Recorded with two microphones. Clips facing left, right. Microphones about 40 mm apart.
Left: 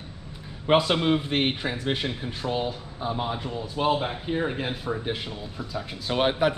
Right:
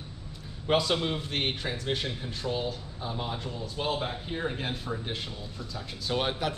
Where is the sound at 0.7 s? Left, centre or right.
Left.